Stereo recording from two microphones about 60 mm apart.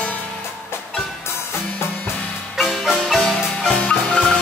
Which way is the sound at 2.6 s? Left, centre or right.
Centre.